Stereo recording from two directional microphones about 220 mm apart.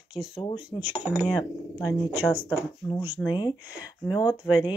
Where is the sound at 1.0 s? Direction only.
5° right (ahead or behind).